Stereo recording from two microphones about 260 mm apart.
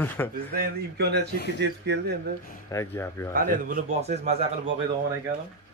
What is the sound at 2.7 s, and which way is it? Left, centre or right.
Speech, centre.